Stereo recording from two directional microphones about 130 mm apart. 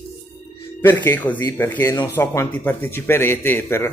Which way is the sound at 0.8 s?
15° left (ahead or behind).